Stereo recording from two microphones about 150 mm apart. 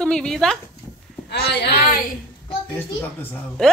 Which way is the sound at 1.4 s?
90° left.